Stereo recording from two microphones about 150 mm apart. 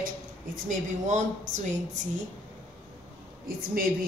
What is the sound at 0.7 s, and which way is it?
Speech, 55° right (ahead or behind).